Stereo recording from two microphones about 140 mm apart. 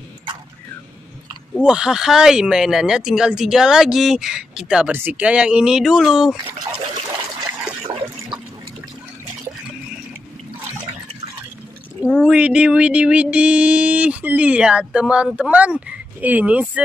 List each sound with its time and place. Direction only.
1.6 s speech: 5° right (ahead or behind)
6.6 s water: 35° right (ahead or behind)
12.3 s a sound: 5° right (ahead or behind)